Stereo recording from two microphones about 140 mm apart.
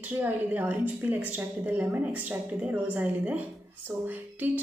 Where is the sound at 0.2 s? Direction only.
10° right (ahead or behind).